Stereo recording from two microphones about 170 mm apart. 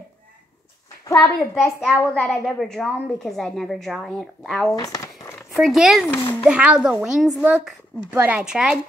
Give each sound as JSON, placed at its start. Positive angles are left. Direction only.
{"t": 1.1, "sound": "a woman's voice", "side_deg": 0}
{"t": 2.0, "sound": "a woman's voice", "side_deg": 10}
{"t": 4.7, "sound": "a sound", "side_deg": 20}
{"t": 5.5, "sound": "a woman's voice", "side_deg": 0}